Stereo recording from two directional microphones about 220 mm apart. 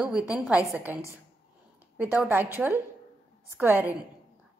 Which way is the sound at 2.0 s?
5° right (ahead or behind).